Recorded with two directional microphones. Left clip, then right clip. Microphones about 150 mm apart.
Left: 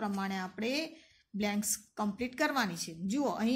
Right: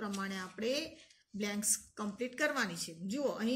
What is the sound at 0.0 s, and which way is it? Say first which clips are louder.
A woman's voice: left 4 dB; 45° left (ahead or behind).